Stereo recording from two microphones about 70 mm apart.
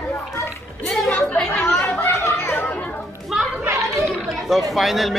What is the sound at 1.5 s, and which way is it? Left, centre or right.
Chatter, left.